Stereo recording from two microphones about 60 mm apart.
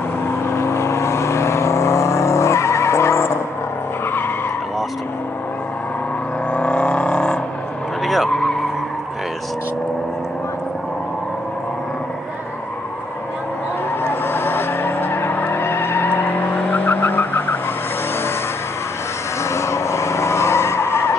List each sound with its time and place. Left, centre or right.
0.5 s vehicle: left
6.5 s vehicle: centre
8.0 s vehicle: centre
14.2 s vehicle: left
19.5 s vehicle: left